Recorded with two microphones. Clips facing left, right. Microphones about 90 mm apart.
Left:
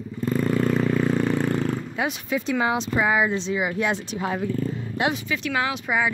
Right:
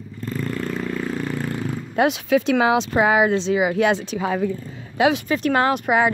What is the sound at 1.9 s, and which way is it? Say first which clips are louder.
Speech: right 8 dB; 80° right.